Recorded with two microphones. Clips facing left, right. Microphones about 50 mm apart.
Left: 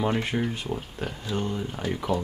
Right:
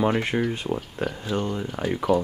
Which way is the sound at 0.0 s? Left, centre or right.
Centre.